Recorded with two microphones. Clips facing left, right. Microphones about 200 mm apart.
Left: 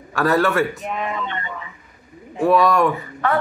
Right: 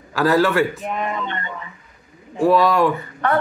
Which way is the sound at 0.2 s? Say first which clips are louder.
Right 1 dB; centre (ahead or behind).